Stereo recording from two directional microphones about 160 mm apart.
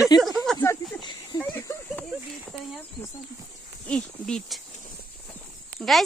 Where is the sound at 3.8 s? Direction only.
5° left (ahead or behind).